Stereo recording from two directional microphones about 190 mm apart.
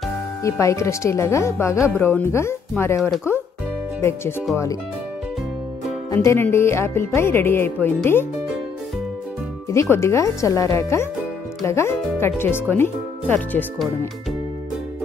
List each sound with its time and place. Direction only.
0.4 s speech: 15° left (ahead or behind)
6.0 s speech: 15° left (ahead or behind)
9.7 s speech: 15° left (ahead or behind)